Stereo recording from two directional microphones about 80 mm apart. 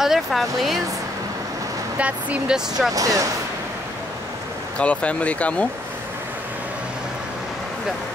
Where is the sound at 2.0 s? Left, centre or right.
Centre.